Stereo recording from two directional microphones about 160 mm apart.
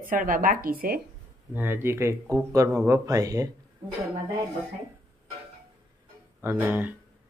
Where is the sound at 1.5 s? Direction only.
15° right (ahead or behind).